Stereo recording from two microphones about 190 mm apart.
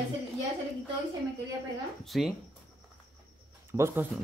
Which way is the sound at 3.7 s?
15° right (ahead or behind).